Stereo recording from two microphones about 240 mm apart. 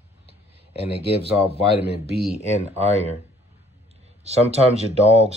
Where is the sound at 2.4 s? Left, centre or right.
Right.